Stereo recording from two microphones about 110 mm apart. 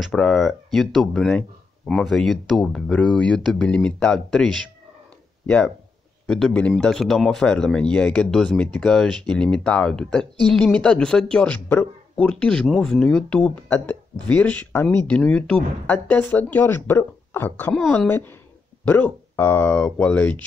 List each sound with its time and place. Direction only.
0.0 s speech: 5° left (ahead or behind)
6.2 s speech: 5° left (ahead or behind)